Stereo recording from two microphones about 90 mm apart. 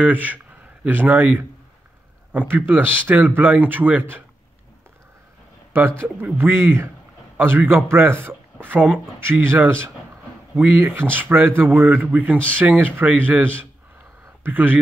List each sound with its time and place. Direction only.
0.0 s a man's voice: 20° right (ahead or behind)
5.7 s a man's voice: 25° right (ahead or behind)